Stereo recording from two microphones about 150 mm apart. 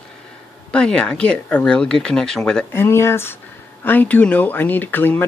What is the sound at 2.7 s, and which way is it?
Speech, 15° left (ahead or behind).